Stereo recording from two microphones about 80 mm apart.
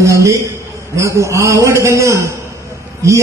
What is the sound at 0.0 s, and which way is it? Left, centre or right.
A man's voice, right.